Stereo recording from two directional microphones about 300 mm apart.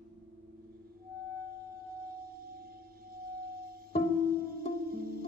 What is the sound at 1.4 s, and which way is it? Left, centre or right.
Singing bowl, right.